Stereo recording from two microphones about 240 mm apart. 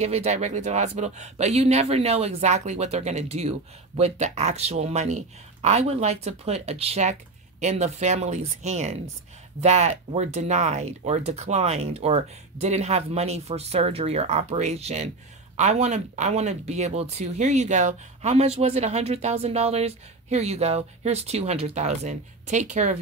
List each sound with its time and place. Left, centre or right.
0.0 s speech: right